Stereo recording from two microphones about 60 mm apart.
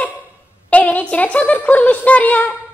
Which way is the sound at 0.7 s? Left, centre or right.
Left.